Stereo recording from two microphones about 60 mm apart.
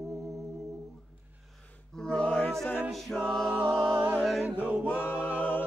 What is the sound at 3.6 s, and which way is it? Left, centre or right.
Music, centre.